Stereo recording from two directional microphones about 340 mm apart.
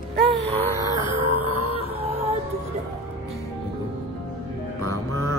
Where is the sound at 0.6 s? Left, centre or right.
Centre.